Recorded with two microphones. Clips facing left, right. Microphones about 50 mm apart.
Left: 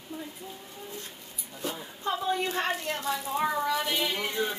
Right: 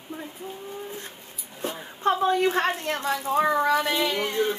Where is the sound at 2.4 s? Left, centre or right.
Right.